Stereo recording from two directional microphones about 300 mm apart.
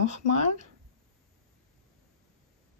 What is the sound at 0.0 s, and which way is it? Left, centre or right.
Speech, left.